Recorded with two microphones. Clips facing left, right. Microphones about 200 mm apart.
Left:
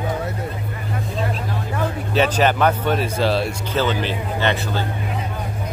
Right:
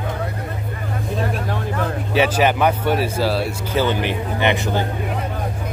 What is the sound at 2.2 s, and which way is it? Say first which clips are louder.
Speech: even; 10° right (ahead or behind).